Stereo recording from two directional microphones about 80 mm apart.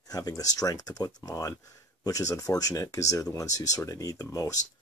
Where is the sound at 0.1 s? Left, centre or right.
Left.